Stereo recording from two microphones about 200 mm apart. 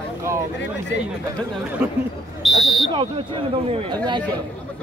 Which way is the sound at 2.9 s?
25° right (ahead or behind).